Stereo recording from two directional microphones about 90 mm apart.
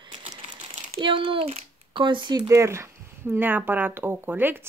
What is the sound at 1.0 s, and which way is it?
Speech, 70° right (ahead or behind).